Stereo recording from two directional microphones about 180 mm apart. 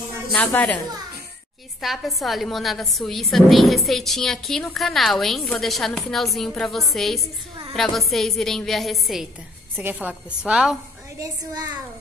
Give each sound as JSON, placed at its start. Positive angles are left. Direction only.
{"t": 0.3, "sound": "a woman's voice", "side_deg": 10}
{"t": 1.8, "sound": "a woman's voice", "side_deg": 0}
{"t": 11.1, "sound": "a child's voice", "side_deg": -20}